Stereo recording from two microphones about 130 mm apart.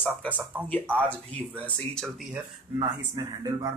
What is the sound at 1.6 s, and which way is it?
Speech, 5° left (ahead or behind).